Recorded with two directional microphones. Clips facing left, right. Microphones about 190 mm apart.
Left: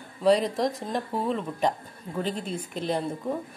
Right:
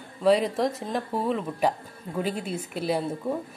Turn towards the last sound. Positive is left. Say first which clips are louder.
# right 1 dB
turn(degrees=-5)  # may be behind; listen again after turning